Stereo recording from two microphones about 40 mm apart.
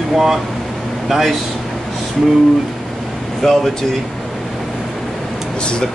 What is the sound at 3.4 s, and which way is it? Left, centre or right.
Speech, centre.